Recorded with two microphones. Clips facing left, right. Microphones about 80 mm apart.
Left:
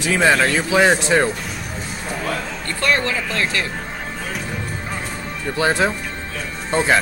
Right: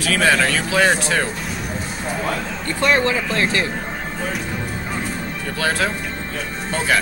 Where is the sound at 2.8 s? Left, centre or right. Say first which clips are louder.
Right 2 dB; right.